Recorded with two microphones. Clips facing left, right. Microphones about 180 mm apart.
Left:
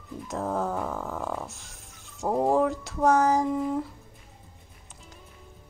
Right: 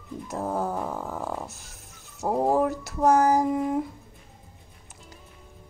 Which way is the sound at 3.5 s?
15° right (ahead or behind).